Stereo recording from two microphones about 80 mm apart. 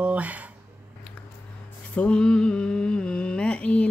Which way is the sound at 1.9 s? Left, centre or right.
Centre.